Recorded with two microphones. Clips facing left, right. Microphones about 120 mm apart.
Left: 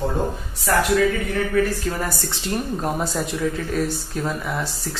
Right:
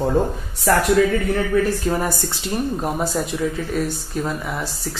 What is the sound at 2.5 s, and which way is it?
Speech, 5° right (ahead or behind).